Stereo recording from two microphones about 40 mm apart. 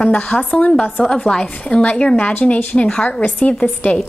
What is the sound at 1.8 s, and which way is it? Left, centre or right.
A woman's voice, left.